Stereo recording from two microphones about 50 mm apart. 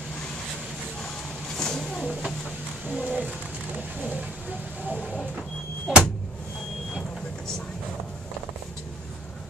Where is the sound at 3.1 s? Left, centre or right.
Right.